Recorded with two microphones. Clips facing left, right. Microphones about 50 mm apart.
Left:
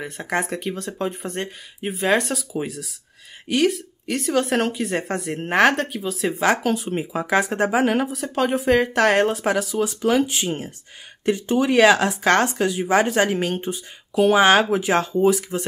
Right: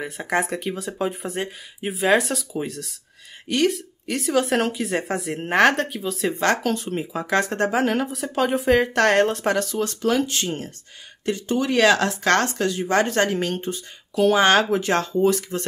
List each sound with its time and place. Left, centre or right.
0.0 s a woman's voice: centre